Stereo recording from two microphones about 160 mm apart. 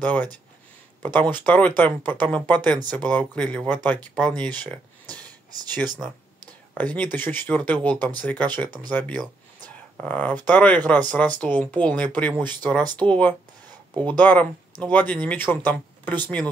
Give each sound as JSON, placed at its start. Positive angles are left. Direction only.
{"t": 0.0, "sound": "speech", "side_deg": 10}
{"t": 2.7, "sound": "speech", "side_deg": -25}
{"t": 3.0, "sound": "speech", "side_deg": 10}
{"t": 6.0, "sound": "speech", "side_deg": 5}